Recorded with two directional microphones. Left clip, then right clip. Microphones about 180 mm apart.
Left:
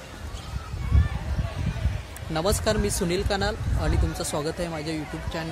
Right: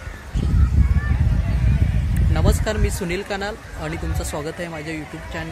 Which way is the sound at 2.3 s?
20° left (ahead or behind).